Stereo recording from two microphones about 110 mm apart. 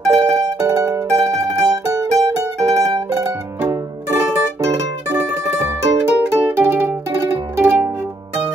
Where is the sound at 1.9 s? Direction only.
30° right (ahead or behind).